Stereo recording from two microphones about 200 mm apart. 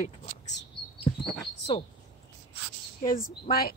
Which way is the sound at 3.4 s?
50° left (ahead or behind).